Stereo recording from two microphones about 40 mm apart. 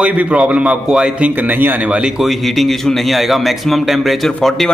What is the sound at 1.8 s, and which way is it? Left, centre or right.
Speech, right.